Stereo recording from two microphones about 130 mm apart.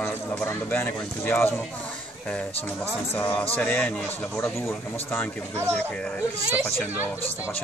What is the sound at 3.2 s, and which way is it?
A man's voice, 10° left (ahead or behind).